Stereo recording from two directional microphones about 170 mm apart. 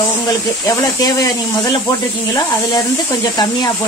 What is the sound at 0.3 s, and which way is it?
Speech, 20° left (ahead or behind).